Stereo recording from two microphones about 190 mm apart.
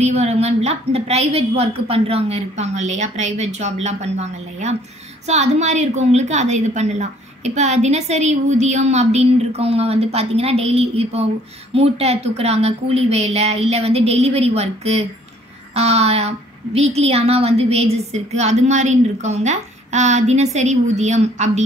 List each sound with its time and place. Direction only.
0.0 s a woman's voice: 35° right (ahead or behind)